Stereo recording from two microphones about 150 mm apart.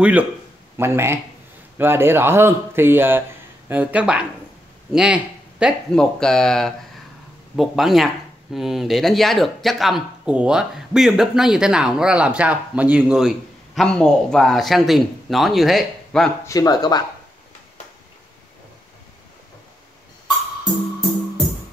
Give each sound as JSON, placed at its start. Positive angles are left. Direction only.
{"t": 0.0, "sound": "a man's voice", "side_deg": -10}
{"t": 5.9, "sound": "speech", "side_deg": 5}
{"t": 13.7, "sound": "speech", "side_deg": 5}
{"t": 16.4, "sound": "speech", "side_deg": 25}